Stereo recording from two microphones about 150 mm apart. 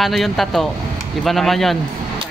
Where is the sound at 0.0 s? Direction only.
Centre (ahead or behind).